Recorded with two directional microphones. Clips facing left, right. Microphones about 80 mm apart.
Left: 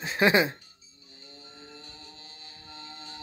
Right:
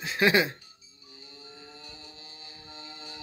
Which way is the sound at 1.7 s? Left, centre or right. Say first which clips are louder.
Even; centre.